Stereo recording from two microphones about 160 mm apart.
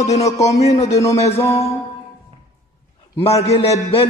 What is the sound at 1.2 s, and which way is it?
Speech, 40° left (ahead or behind).